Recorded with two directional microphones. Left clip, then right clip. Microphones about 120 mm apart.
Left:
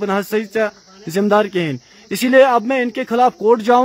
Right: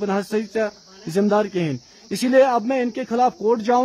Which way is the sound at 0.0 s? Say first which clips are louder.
Left 4 dB; 20° left (ahead or behind).